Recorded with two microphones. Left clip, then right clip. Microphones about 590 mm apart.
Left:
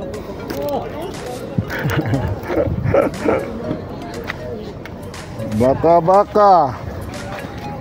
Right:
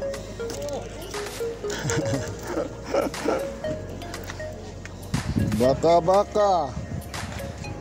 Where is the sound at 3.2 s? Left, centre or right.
Right.